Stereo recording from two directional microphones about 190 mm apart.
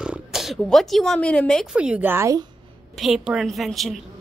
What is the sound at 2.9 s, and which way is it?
Speech, centre (ahead or behind).